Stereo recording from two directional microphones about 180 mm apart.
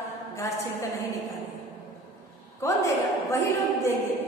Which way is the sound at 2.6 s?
15° left (ahead or behind).